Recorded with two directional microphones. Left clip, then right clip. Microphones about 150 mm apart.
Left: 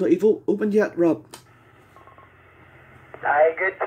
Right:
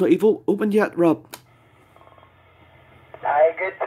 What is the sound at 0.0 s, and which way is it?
Speech, 50° right (ahead or behind).